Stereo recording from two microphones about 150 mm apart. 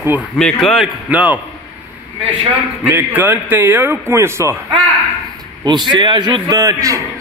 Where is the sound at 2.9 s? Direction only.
10° right (ahead or behind).